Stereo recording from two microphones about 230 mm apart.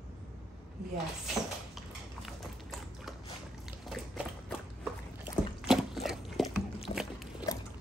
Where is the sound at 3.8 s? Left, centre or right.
Centre.